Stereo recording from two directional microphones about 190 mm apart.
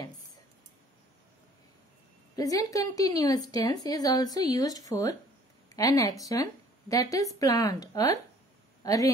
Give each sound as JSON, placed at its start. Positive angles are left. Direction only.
{"t": 2.3, "sound": "a woman's voice", "side_deg": 20}